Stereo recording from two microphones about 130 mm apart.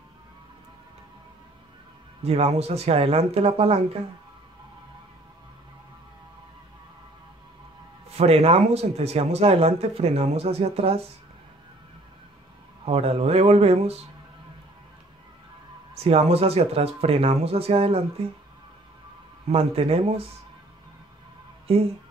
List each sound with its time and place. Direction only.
2.2 s speech: 50° right (ahead or behind)
8.1 s speech: 50° right (ahead or behind)
12.8 s speech: 50° right (ahead or behind)
16.0 s speech: 50° right (ahead or behind)
19.5 s speech: 50° right (ahead or behind)
21.7 s speech: 50° right (ahead or behind)